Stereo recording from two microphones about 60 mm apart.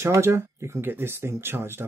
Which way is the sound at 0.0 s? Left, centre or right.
Right.